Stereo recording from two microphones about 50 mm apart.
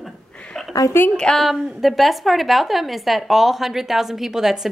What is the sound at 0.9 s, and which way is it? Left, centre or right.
Speech, left.